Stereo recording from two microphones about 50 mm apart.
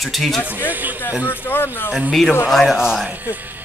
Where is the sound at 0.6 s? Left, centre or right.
Right.